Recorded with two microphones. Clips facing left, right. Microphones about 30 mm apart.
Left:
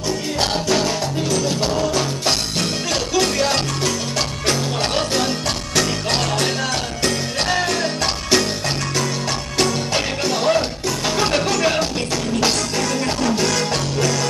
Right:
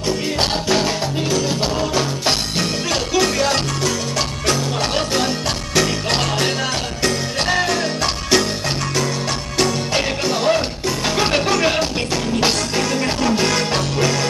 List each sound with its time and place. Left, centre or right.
0.7 s music: centre
9.9 s music: centre